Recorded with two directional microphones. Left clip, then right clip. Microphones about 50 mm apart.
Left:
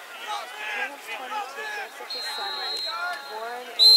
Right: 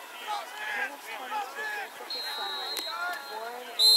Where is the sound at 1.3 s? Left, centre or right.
Centre.